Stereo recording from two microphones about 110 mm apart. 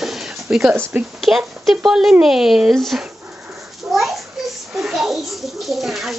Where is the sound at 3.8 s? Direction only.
Centre (ahead or behind).